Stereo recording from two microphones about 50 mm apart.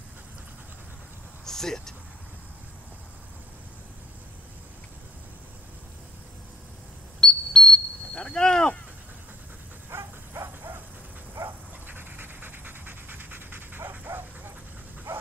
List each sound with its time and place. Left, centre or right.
1.4 s a sound: centre
7.2 s smoke detector: centre
8.2 s a sound: centre
9.8 s bow-wow: right
11.4 s dog: right
15.1 s bow-wow: right